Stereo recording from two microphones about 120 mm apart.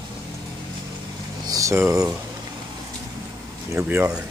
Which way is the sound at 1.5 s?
25° right (ahead or behind).